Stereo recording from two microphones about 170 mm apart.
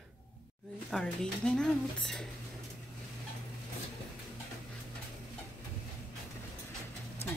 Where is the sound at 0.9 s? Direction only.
5° left (ahead or behind).